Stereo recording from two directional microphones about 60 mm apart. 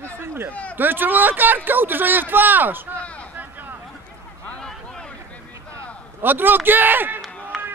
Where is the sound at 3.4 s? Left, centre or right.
Right.